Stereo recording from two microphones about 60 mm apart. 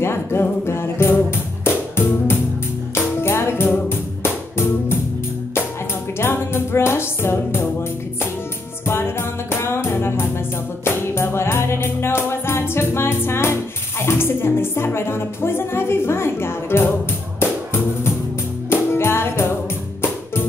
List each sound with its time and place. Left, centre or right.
0.0 s music: left
6.1 s music: left
8.8 s music: left
18.7 s music: left